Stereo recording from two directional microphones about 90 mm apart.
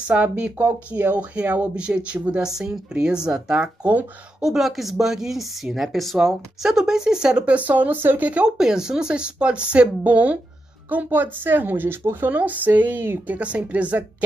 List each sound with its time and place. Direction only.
0.0 s speech: 15° right (ahead or behind)
4.5 s speech: centre (ahead or behind)